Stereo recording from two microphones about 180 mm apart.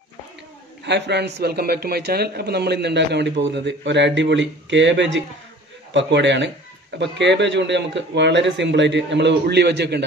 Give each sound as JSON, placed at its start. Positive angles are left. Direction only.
{"t": 0.8, "sound": "a man's voice", "side_deg": -70}